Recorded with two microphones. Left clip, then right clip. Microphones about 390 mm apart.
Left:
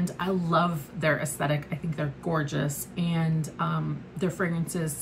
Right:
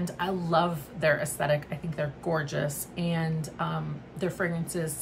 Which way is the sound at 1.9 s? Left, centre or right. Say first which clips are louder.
Right 1 dB; centre.